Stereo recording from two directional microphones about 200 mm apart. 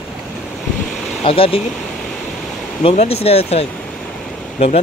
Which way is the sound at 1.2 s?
30° left (ahead or behind).